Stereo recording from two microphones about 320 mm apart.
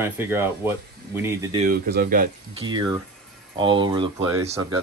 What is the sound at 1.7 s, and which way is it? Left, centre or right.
Speech, right.